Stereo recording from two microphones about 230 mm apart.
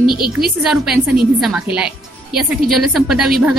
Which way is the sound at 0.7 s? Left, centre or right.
Centre.